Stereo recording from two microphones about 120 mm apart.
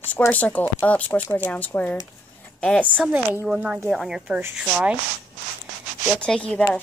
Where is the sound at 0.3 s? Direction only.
15° left (ahead or behind).